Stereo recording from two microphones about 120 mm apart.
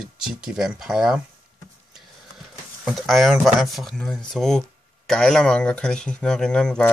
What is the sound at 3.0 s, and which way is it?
Speech, centre (ahead or behind).